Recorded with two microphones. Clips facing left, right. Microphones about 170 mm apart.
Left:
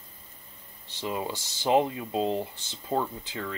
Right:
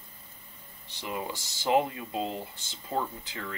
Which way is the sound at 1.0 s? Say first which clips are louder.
Left 3 dB; 20° left (ahead or behind).